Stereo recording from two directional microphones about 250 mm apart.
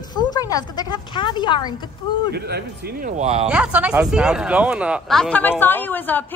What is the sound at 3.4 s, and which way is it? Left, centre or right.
Speech, centre.